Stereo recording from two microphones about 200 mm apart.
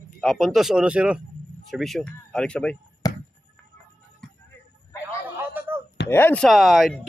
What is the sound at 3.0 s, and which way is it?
Basketball bounce, 20° left (ahead or behind).